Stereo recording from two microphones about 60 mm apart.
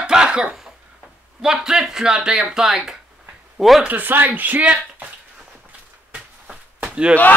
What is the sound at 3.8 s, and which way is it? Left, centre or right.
Speech, right.